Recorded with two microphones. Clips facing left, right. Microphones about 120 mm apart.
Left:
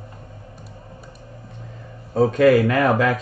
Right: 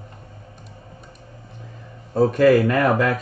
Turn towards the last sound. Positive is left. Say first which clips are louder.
# even
turn(degrees=0)  # may be behind; listen again after turning